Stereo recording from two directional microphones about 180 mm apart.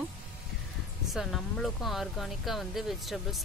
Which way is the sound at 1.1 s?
Centre (ahead or behind).